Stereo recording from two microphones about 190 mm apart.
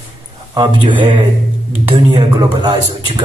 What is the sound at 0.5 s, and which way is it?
A man's voice, 25° right (ahead or behind).